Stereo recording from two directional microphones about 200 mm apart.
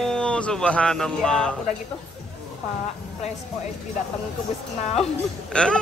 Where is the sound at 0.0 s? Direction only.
5° left (ahead or behind).